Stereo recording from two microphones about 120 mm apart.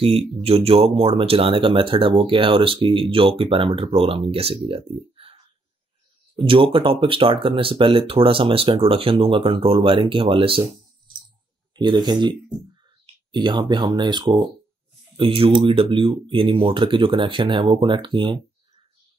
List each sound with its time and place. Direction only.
0.4 s speech: 55° right (ahead or behind)
6.3 s speech: 45° right (ahead or behind)
11.7 s speech: 40° right (ahead or behind)
15.1 s speech: 50° right (ahead or behind)